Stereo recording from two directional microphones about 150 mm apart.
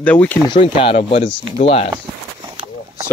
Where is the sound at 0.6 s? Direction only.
35° left (ahead or behind).